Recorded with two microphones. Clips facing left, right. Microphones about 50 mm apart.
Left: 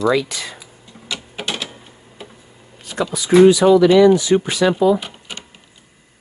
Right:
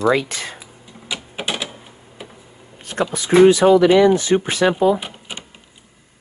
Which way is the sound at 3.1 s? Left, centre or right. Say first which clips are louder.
Left 1 dB; right.